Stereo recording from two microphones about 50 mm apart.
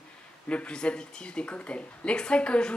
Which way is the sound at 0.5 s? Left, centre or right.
Left.